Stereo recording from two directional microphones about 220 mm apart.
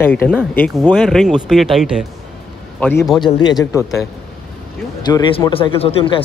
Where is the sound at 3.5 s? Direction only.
15° left (ahead or behind).